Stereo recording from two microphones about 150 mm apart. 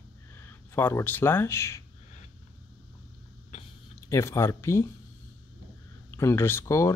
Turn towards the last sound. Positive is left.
turn(degrees=20)  # may be behind; listen again after turning